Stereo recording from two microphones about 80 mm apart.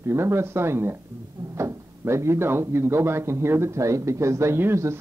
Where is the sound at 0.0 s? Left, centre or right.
Right.